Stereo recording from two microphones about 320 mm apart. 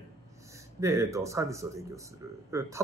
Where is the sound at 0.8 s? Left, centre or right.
Centre.